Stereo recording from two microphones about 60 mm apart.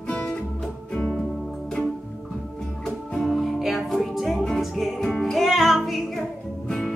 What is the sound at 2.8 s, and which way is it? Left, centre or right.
Music, centre.